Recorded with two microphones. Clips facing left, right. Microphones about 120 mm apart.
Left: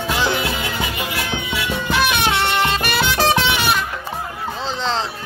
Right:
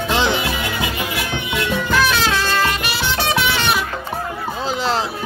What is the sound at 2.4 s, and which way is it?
Music, 25° left (ahead or behind).